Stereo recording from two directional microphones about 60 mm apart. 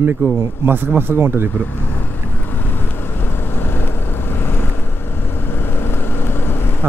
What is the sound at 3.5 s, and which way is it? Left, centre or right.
Vehicle, left.